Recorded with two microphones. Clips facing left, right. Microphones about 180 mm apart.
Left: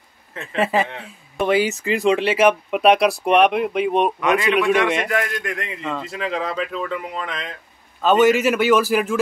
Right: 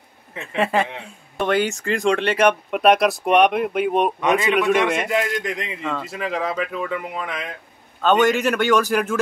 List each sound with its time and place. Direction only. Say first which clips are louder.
0.3 s speech: even; 15° right (ahead or behind)
0.6 s speech: left 1 dB; 5° left (ahead or behind)
5.1 s speech: right 1 dB; 20° right (ahead or behind)
5.9 s speech: even; centre (ahead or behind)
8.0 s speech: left 2 dB; 5° left (ahead or behind)